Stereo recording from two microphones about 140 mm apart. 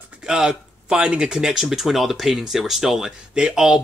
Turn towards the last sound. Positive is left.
turn(degrees=-5)  # may be behind; listen again after turning